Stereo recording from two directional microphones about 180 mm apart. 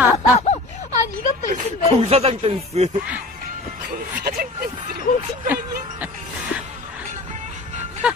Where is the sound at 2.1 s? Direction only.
35° right (ahead or behind).